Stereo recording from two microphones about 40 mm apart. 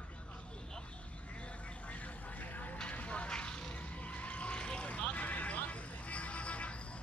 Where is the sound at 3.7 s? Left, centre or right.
Left.